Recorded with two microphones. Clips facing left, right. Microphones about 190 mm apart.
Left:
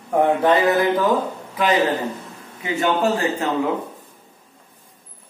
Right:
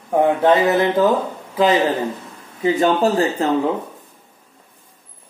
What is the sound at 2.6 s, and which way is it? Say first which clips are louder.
Speech: right 4 dB; 35° right (ahead or behind).